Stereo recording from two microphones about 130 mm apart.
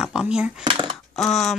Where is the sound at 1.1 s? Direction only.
Centre (ahead or behind).